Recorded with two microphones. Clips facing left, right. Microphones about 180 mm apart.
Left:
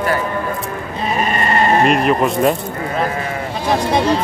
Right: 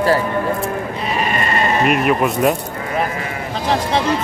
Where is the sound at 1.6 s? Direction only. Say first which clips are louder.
Left 5 dB; 50° left (ahead or behind).